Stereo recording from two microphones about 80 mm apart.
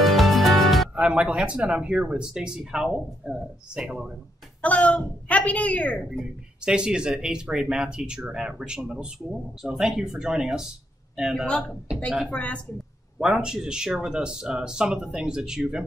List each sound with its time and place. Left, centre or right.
0.0 s music: centre
0.9 s speech: centre
4.6 s speech: centre
6.1 s speech: centre
12.3 s speech: centre
13.2 s speech: centre